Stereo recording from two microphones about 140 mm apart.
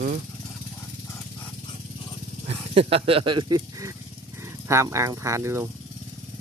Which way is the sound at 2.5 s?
45° right (ahead or behind).